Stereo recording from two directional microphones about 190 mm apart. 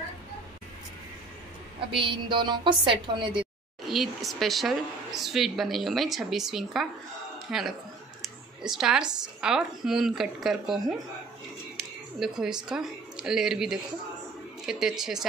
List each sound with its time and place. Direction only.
2.0 s a woman's voice: 25° right (ahead or behind)
3.9 s a woman's voice: centre (ahead or behind)